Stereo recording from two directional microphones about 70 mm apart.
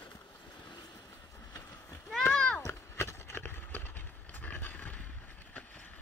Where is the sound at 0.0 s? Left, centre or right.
Left.